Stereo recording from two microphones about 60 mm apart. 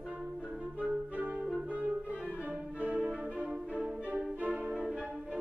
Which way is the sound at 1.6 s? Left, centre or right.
Right.